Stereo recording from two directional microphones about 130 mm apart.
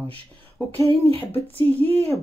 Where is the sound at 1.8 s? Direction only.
50° right (ahead or behind).